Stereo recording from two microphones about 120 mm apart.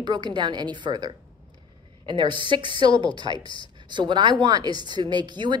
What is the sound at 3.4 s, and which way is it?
Speech, 40° left (ahead or behind).